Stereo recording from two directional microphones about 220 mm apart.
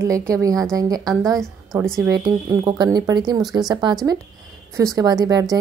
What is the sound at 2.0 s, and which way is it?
Speech, 15° right (ahead or behind).